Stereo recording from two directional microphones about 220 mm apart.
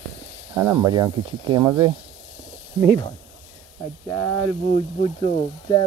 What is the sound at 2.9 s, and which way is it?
Speech, 20° left (ahead or behind).